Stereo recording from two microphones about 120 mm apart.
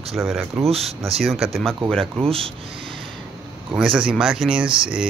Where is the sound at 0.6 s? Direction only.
55° right (ahead or behind).